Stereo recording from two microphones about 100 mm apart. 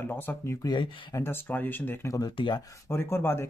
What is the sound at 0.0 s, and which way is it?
Speech, 20° left (ahead or behind).